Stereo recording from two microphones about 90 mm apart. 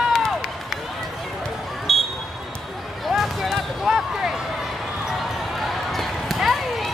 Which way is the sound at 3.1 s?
5° right (ahead or behind).